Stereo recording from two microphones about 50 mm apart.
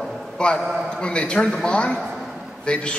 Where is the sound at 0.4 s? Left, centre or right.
Centre.